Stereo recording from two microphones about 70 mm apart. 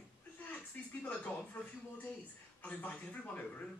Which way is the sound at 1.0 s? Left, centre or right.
Left.